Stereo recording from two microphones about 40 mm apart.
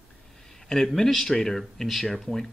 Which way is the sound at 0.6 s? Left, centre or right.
Centre.